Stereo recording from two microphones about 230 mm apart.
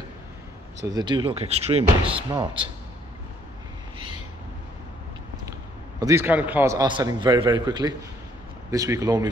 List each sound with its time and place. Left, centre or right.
0.8 s speech: centre
5.9 s a man's voice: centre